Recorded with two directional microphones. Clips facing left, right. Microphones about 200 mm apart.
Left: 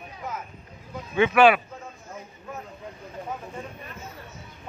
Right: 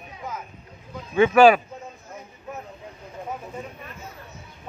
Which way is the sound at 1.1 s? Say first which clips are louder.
Right 3 dB; 40° right (ahead or behind).